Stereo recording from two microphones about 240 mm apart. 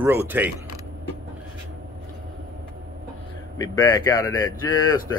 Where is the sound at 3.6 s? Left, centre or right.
Centre.